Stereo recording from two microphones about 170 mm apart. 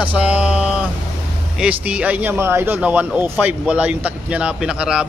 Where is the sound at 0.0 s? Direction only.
10° right (ahead or behind).